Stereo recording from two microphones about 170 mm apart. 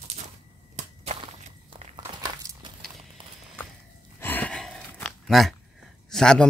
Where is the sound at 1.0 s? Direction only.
30° right (ahead or behind).